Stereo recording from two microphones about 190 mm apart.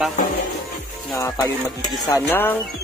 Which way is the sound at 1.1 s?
20° left (ahead or behind).